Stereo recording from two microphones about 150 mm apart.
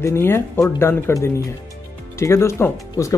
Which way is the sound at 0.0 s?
20° left (ahead or behind).